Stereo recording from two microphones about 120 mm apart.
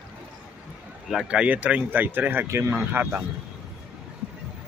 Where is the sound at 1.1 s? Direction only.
5° right (ahead or behind).